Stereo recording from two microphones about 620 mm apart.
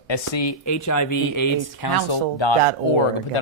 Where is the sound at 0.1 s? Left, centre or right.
Left.